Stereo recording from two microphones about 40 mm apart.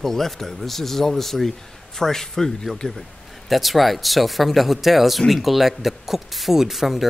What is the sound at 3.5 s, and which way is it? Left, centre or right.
Speech, centre.